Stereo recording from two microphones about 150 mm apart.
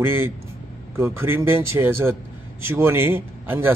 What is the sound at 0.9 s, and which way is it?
A man's voice, 15° right (ahead or behind).